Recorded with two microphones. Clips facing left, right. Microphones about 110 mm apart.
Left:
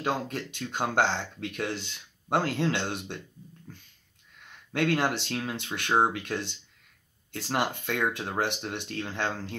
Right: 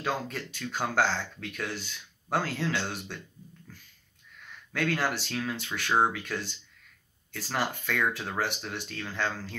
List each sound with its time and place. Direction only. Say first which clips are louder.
0.0 s speech: left 2 dB; 15° left (ahead or behind)
4.5 s speech: left 3 dB; 20° left (ahead or behind)